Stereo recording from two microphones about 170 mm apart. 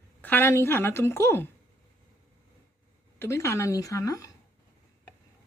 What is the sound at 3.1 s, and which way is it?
Speech, 15° left (ahead or behind).